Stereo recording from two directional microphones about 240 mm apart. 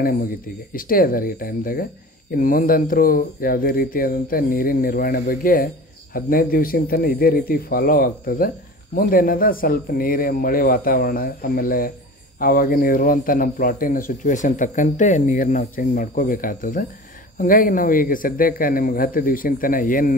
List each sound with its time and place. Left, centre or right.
0.0 s speech: left